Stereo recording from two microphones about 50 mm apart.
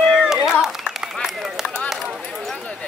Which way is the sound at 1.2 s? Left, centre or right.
Centre.